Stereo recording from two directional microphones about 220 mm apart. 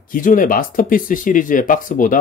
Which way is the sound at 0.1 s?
40° left (ahead or behind).